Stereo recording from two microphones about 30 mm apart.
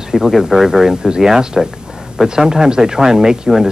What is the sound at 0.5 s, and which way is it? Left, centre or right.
Speech, centre.